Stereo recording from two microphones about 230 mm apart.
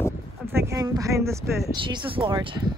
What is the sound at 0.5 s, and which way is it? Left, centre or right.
Speech, centre.